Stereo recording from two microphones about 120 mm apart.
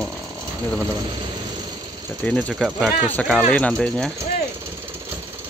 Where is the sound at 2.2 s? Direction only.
5° left (ahead or behind).